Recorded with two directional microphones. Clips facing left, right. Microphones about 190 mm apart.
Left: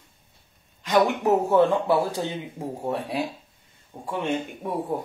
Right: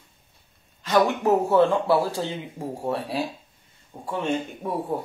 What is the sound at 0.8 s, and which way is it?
Speech, 15° left (ahead or behind).